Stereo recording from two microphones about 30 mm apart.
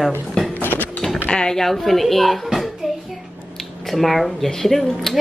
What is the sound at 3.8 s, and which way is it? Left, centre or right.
Speech, centre.